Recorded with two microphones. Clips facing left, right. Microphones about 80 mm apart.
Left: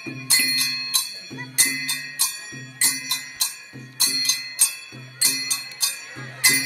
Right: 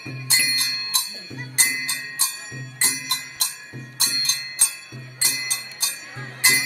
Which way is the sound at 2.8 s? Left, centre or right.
Right.